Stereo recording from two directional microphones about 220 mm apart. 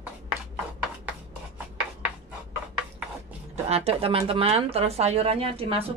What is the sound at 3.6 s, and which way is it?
Speech, 25° right (ahead or behind).